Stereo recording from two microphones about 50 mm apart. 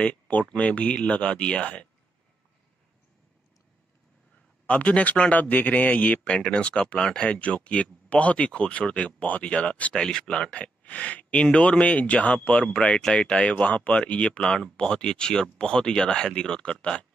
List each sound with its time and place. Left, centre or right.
0.0 s speech: left
4.6 s speech: left